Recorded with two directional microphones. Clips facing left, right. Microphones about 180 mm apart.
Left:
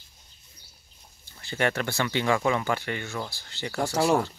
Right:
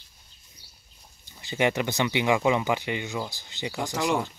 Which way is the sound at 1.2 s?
15° right (ahead or behind).